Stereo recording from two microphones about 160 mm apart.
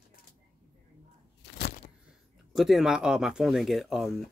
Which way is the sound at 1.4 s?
90° left.